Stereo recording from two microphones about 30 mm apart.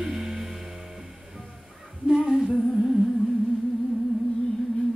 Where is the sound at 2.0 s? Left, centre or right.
Right.